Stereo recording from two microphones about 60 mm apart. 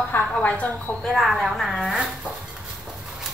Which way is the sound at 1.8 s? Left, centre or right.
Centre.